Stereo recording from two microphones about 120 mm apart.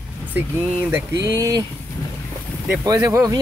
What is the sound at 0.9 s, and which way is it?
Speech, 30° right (ahead or behind).